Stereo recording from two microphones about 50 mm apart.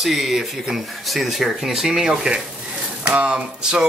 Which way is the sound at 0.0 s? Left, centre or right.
Centre.